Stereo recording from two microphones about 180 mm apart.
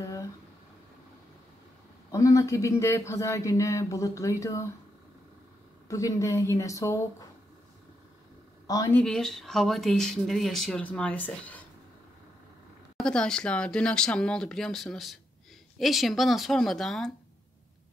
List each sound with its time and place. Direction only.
0.0 s a sound: 20° left (ahead or behind)
2.0 s speech: 20° left (ahead or behind)
5.9 s speech: 15° left (ahead or behind)
8.6 s speech: 20° left (ahead or behind)
9.0 s speech: 5° left (ahead or behind)
12.9 s speech: 5° left (ahead or behind)